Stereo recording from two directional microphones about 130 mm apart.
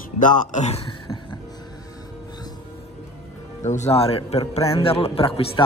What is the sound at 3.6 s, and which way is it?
A man's voice, 65° left (ahead or behind).